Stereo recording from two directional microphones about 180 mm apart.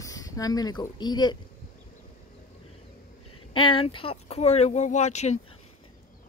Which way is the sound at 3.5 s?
30° left (ahead or behind).